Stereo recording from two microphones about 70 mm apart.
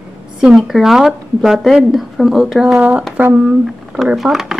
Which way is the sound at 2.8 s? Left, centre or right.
Centre.